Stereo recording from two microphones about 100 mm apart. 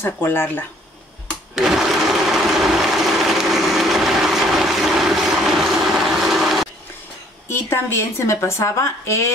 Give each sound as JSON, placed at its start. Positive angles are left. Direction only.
{"t": 0.0, "sound": "a woman's voice", "side_deg": 20}
{"t": 1.5, "sound": "sewing machine", "side_deg": -5}
{"t": 7.4, "sound": "a woman's voice", "side_deg": 25}